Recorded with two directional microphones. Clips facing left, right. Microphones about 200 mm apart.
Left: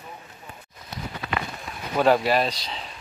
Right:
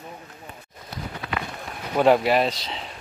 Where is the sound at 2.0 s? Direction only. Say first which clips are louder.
Right 2 dB; 15° right (ahead or behind).